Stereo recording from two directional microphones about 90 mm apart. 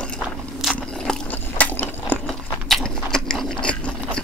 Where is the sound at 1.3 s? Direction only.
20° left (ahead or behind).